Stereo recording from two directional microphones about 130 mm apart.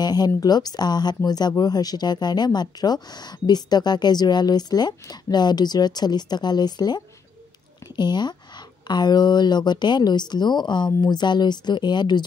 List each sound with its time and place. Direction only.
0.0 s speech: 30° left (ahead or behind)